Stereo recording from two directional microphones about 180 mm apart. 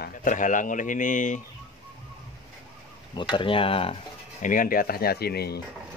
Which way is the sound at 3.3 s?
30° left (ahead or behind).